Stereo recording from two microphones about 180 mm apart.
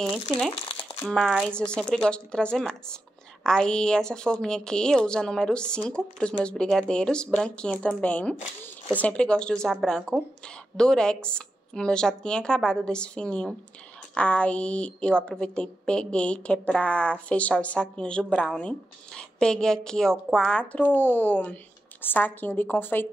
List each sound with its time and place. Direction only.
0.3 s a woman's voice: centre (ahead or behind)
0.7 s crumpling: 30° left (ahead or behind)
1.0 s a woman's voice: centre (ahead or behind)